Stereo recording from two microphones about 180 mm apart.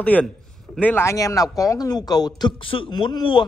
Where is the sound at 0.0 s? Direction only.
10° left (ahead or behind).